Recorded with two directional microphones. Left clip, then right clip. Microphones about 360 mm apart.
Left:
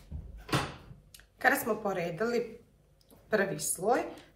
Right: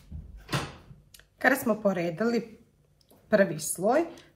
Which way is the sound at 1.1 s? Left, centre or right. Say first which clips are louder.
Right 3 dB; centre.